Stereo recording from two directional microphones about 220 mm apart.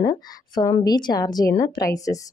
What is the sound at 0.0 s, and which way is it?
A woman's voice, 15° left (ahead or behind).